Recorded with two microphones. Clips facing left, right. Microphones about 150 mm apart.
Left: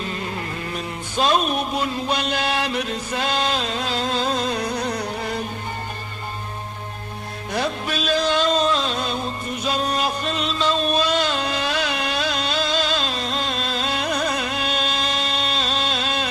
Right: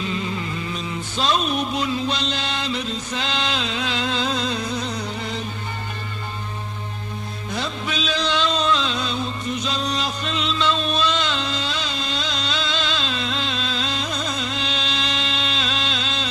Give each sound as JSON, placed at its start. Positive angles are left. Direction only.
{"t": 0.0, "sound": "music", "side_deg": 50}
{"t": 7.5, "sound": "music", "side_deg": 55}